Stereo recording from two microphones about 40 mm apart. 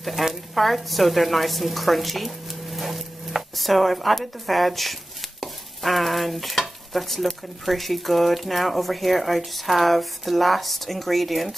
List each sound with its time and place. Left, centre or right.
0.2 s stir: centre
0.6 s a woman's voice: centre
5.4 s stir: centre